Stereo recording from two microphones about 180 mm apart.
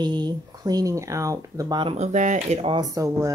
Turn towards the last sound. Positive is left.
turn(degrees=-20)  # may be behind; listen again after turning